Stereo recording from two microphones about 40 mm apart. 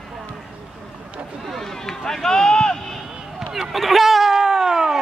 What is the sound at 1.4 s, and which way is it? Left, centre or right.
Run, centre.